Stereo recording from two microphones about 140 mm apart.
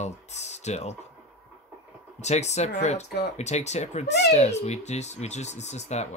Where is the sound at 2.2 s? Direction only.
55° left (ahead or behind).